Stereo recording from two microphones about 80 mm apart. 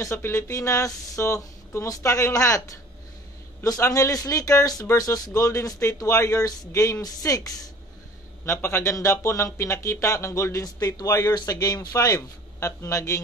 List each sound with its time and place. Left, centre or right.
0.0 s speech: left
8.5 s speech: left